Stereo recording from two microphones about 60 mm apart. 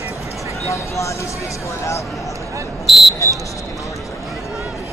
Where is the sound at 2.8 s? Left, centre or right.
Centre.